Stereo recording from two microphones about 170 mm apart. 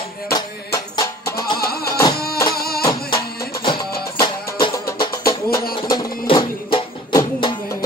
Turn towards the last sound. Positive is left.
turn(degrees=25)  # may be behind; listen again after turning